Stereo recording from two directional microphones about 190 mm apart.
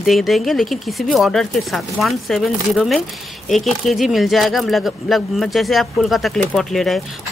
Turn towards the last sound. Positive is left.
turn(degrees=0)  # may be behind; listen again after turning